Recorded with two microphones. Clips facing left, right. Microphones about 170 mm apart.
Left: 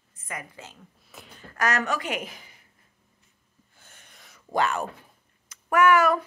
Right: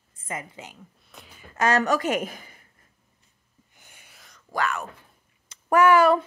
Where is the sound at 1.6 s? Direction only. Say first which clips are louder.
Right 5 dB; 30° right (ahead or behind); by 2.6 s 50° right (ahead or behind).